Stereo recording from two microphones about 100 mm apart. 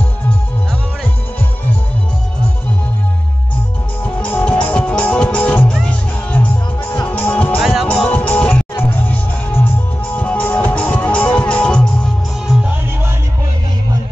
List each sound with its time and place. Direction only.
4.0 s music: 15° left (ahead or behind)
7.6 s music: centre (ahead or behind)
7.9 s music: 15° left (ahead or behind)